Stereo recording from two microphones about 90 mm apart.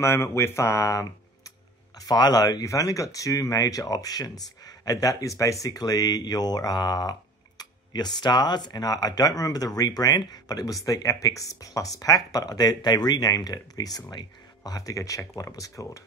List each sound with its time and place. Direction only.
0.0 s speech: 30° left (ahead or behind)
2.0 s speech: 50° left (ahead or behind)